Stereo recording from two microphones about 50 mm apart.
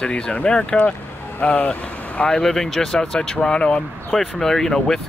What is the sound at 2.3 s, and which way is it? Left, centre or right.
Speech, centre.